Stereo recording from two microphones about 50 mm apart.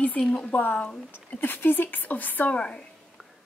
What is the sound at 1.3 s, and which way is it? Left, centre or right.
Speech, left.